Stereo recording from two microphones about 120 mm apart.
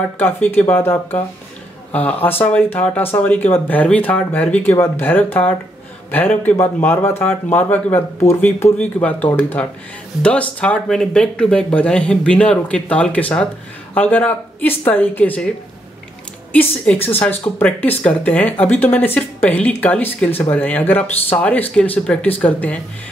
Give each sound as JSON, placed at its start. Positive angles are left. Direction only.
{"t": 0.2, "sound": "speech", "side_deg": 15}
{"t": 16.5, "sound": "speech", "side_deg": 10}